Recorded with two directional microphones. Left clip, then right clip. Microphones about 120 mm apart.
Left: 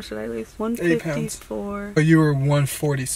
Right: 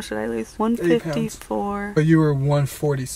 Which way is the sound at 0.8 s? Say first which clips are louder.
Even; 10° left (ahead or behind).